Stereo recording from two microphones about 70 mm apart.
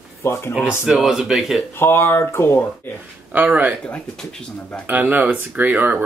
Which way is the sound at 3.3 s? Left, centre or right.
Right.